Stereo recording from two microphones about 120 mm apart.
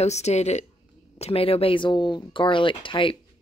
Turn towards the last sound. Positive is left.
turn(degrees=45)  # may be behind; listen again after turning